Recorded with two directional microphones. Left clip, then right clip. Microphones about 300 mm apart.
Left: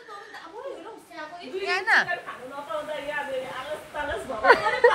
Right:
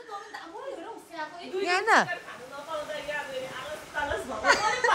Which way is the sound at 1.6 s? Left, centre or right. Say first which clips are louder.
Left 1 dB; right.